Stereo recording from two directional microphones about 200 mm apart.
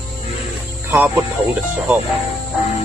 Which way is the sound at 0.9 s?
10° right (ahead or behind).